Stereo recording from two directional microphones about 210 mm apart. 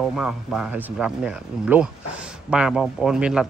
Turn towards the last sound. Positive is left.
turn(degrees=-5)  # may be behind; listen again after turning